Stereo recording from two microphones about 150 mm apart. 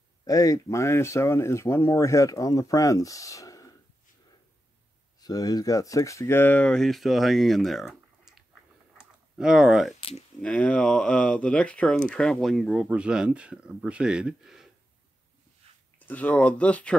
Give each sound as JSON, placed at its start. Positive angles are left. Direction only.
{"t": 0.2, "sound": "speech", "side_deg": 25}
{"t": 5.2, "sound": "speech", "side_deg": 25}
{"t": 9.9, "sound": "speech", "side_deg": 40}
{"t": 10.4, "sound": "speech", "side_deg": 10}
{"t": 15.7, "sound": "a sound", "side_deg": -40}
{"t": 16.1, "sound": "speech", "side_deg": 10}